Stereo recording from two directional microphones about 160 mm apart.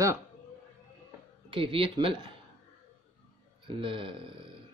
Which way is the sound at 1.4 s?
35° right (ahead or behind).